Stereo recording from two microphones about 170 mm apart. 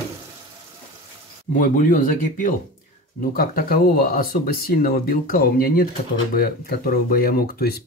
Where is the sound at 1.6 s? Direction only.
50° left (ahead or behind).